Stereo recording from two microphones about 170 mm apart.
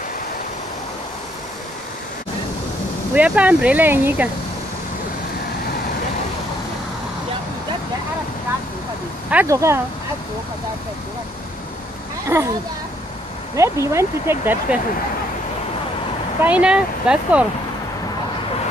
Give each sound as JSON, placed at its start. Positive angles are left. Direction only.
{"t": 3.2, "sound": "speech", "side_deg": -10}
{"t": 9.3, "sound": "speech", "side_deg": -15}
{"t": 12.3, "sound": "speech", "side_deg": -15}
{"t": 13.6, "sound": "speech", "side_deg": -15}
{"t": 16.4, "sound": "speech", "side_deg": -5}